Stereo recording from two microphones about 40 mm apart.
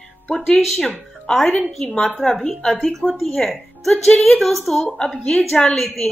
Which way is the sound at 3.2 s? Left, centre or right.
Centre.